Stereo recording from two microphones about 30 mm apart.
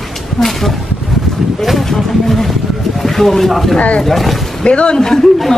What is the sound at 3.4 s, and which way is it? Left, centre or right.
Speech, centre.